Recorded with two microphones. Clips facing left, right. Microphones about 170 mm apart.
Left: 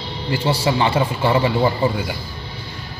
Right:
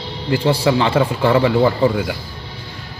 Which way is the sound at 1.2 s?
60° right (ahead or behind).